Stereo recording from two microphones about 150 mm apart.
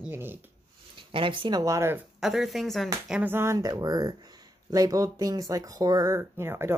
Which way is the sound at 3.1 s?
10° right (ahead or behind).